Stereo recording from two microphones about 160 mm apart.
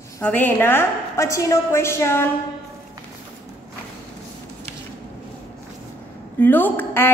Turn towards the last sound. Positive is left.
turn(degrees=15)  # may be behind; listen again after turning